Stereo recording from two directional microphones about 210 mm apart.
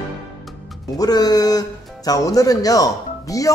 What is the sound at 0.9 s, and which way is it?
A man's voice, 20° left (ahead or behind).